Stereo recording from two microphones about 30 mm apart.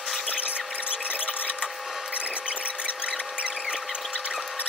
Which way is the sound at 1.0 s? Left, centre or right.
Right.